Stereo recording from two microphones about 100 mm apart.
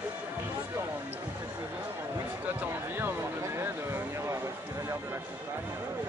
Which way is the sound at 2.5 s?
20° right (ahead or behind).